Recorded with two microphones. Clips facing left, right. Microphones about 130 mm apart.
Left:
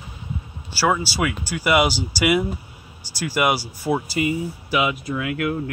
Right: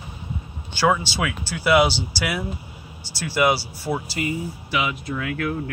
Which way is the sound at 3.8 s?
15° left (ahead or behind).